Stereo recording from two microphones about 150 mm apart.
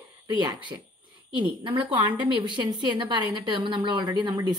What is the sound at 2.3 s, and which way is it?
Speech, 30° right (ahead or behind).